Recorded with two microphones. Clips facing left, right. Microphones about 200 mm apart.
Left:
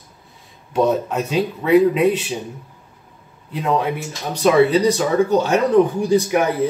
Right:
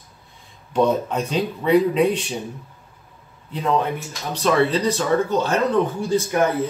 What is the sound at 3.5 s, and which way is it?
Speech, 10° left (ahead or behind).